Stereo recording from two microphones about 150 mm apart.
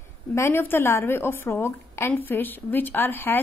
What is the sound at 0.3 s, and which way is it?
A woman's voice, 15° left (ahead or behind).